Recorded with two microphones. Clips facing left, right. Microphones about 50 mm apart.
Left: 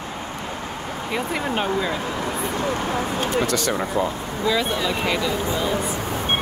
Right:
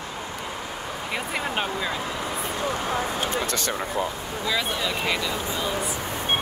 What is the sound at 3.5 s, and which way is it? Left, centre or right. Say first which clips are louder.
Speech: left 5 dB; right.